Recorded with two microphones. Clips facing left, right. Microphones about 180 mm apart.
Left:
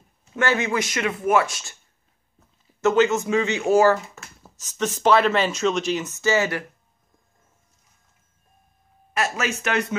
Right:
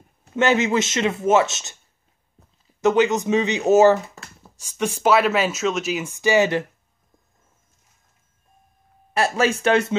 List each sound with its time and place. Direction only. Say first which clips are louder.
0.4 s speech: right 4 dB; 20° right (ahead or behind)
2.8 s speech: right 1 dB; 15° right (ahead or behind)
9.1 s speech: right 5 dB; 30° right (ahead or behind)